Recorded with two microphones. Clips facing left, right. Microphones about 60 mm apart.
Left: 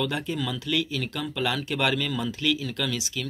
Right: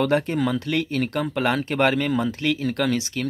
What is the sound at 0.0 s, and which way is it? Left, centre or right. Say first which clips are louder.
Speech: right 7 dB; right.